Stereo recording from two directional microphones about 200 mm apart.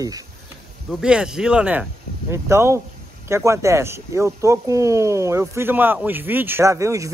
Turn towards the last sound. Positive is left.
turn(degrees=-15)  # may be behind; listen again after turning